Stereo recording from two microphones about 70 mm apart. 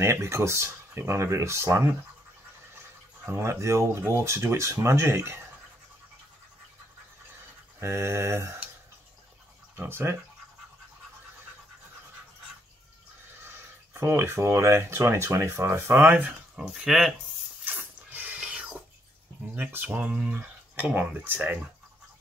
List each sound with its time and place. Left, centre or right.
0.0 s speech: right
3.3 s speech: right
7.8 s speech: right
9.8 s speech: right
13.4 s speech: right
16.5 s speech: centre
17.6 s a sound: right
19.5 s speech: right